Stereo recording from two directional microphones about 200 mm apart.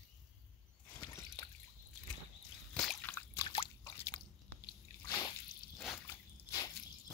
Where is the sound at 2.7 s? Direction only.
5° left (ahead or behind).